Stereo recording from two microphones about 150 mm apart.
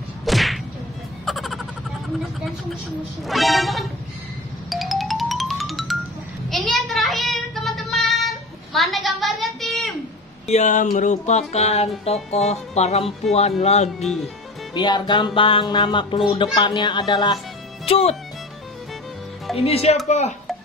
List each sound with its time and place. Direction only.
0.2 s whip: centre (ahead or behind)
1.2 s music: centre (ahead or behind)
2.1 s speech: centre (ahead or behind)
4.6 s music: centre (ahead or behind)
6.5 s child singing: centre (ahead or behind)
10.4 s speech: 50° left (ahead or behind)
14.7 s music: 30° left (ahead or behind)
17.8 s speech: 40° left (ahead or behind)
19.5 s music: 40° left (ahead or behind)
20.1 s speech: 50° left (ahead or behind)